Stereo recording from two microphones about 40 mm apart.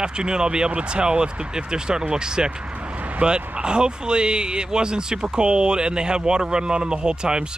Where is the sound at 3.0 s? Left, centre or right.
Right.